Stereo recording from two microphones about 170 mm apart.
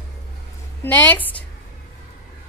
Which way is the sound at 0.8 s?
10° left (ahead or behind).